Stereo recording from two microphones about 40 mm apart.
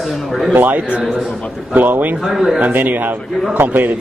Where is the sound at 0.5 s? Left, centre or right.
Right.